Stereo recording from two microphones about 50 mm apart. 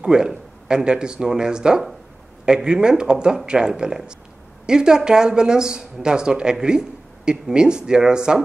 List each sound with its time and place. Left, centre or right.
0.0 s a man's voice: centre